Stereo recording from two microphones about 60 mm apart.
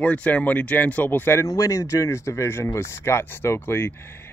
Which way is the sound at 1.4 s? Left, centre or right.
Left.